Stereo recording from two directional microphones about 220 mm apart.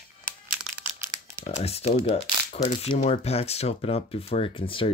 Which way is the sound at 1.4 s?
30° left (ahead or behind).